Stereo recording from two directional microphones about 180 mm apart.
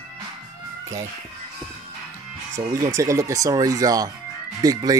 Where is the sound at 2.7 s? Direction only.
15° right (ahead or behind).